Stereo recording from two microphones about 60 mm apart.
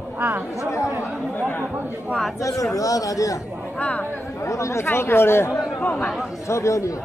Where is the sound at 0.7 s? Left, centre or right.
Left.